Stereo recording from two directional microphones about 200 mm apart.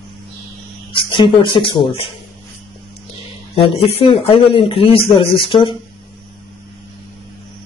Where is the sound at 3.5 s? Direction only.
25° left (ahead or behind).